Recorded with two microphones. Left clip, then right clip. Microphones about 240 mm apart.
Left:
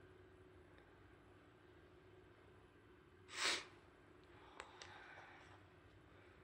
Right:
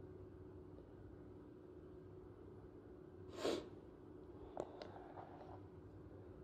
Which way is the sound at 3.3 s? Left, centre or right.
Left.